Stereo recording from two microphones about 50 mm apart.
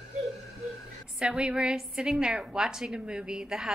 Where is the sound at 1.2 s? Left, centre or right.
Right.